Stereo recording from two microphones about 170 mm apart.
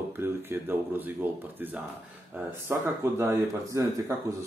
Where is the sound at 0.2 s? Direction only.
15° right (ahead or behind).